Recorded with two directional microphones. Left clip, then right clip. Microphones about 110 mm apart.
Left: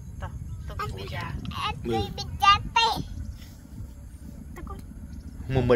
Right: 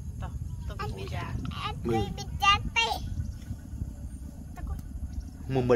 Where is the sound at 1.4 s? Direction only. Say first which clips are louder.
Left 6 dB; 25° left (ahead or behind).